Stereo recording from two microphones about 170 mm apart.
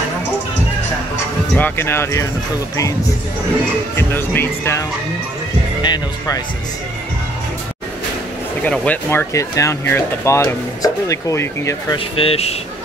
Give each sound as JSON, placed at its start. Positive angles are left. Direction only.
{"t": 1.5, "sound": "speech", "side_deg": 10}
{"t": 3.9, "sound": "speech", "side_deg": 10}
{"t": 8.6, "sound": "speech", "side_deg": 10}
{"t": 12.2, "sound": "speech", "side_deg": 35}